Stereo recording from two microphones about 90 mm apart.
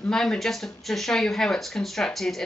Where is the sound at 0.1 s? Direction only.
5° left (ahead or behind).